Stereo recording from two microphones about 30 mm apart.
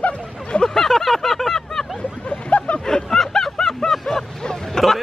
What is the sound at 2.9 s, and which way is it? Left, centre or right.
Snicker, centre.